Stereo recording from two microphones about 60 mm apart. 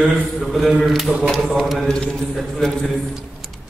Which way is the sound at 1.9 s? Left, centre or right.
Centre.